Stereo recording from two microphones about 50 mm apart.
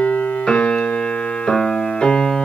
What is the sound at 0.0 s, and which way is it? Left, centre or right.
Music, left.